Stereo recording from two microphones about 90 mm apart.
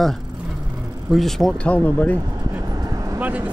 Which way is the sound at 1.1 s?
5° left (ahead or behind).